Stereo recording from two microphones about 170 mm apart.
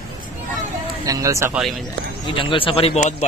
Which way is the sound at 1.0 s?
20° right (ahead or behind).